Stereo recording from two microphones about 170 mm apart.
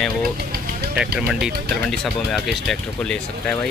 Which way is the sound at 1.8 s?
Centre (ahead or behind).